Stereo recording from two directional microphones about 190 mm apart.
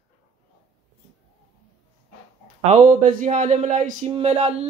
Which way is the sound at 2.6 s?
40° right (ahead or behind).